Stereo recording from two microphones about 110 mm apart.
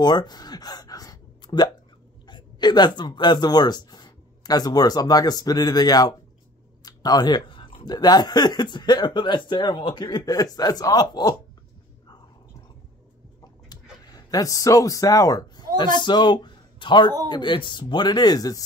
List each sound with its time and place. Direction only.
0.0 s gasp: 40° left (ahead or behind)
2.2 s speech: 40° left (ahead or behind)
13.4 s a sound: 35° left (ahead or behind)
17.3 s speech: 45° left (ahead or behind)